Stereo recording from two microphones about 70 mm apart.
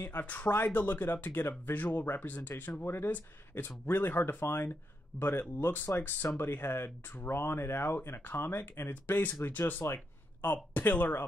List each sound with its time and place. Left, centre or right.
0.0 s speech: left